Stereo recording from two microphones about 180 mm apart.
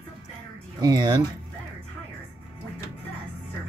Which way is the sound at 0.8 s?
25° right (ahead or behind).